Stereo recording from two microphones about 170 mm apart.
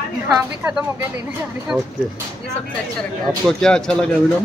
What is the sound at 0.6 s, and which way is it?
Speech, 15° right (ahead or behind).